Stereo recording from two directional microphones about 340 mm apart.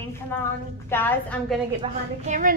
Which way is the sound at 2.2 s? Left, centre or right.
Right.